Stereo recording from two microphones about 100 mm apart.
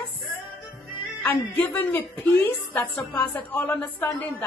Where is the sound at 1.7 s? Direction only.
20° left (ahead or behind).